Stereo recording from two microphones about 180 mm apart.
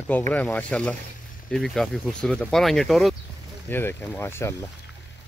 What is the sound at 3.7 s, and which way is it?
Speech, 10° left (ahead or behind).